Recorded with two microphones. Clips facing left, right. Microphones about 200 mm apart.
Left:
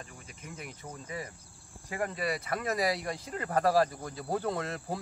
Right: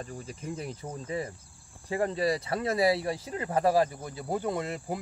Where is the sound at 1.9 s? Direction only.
30° right (ahead or behind).